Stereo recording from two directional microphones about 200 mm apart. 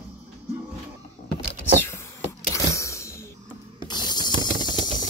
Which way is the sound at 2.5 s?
15° left (ahead or behind).